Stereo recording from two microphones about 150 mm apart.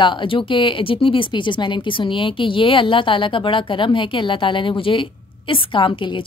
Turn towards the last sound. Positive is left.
turn(degrees=35)  # may be behind; listen again after turning